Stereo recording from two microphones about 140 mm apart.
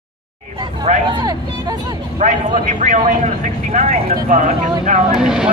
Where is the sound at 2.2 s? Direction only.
60° right (ahead or behind).